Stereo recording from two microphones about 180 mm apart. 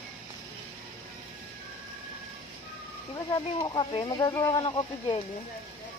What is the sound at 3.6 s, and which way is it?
Speech, 25° left (ahead or behind).